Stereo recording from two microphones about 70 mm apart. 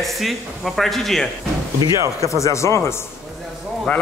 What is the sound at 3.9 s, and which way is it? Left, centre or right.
Speech, left.